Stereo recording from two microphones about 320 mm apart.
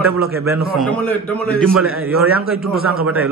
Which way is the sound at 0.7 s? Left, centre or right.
Centre.